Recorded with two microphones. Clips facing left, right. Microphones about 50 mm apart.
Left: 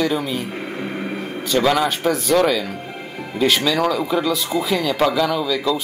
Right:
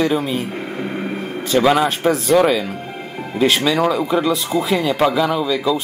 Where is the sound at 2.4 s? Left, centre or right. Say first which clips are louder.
Right 2 dB; centre.